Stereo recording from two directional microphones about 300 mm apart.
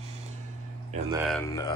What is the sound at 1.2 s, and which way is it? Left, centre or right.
Speech, centre.